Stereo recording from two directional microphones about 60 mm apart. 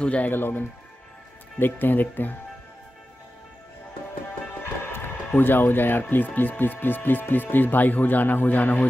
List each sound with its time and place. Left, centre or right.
0.0 s speech: left
0.3 s speech: left
4.8 s speech: left